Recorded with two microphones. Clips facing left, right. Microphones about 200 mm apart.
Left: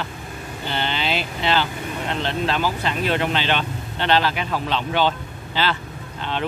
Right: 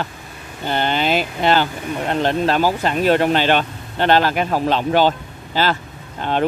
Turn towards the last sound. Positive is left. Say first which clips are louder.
# right 6 dB
turn(degrees=-45)  # may be behind; listen again after turning